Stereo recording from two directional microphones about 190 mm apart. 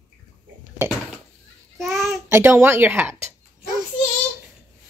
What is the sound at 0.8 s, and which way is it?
Speech, 15° right (ahead or behind).